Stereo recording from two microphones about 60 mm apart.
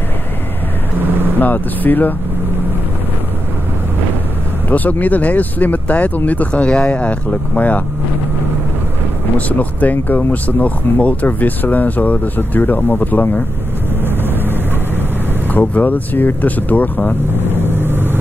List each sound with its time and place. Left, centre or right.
1.4 s speech: left
4.6 s speech: left
9.5 s speech: left
15.5 s speech: left
17.6 s vehicle: right